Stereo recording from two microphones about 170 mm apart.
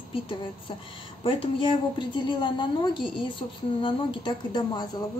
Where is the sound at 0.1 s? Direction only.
30° left (ahead or behind).